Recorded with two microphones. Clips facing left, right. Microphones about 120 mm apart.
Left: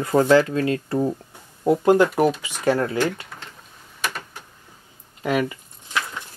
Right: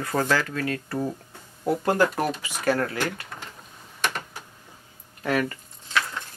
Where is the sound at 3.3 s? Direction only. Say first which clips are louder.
Right 1 dB; centre (ahead or behind).